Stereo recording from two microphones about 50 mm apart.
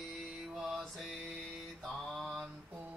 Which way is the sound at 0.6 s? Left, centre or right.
Centre.